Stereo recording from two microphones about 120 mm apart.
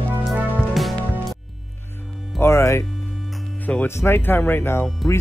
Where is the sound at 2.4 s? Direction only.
25° left (ahead or behind).